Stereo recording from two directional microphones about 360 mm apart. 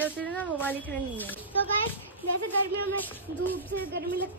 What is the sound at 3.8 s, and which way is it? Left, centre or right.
Speech, right.